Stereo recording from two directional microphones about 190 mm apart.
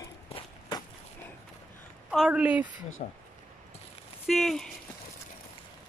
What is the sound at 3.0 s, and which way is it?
Speech, 35° left (ahead or behind).